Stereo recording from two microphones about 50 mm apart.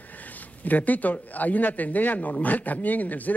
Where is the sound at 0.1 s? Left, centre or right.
Left.